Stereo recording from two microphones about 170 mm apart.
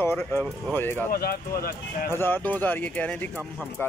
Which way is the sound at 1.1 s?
60° left (ahead or behind).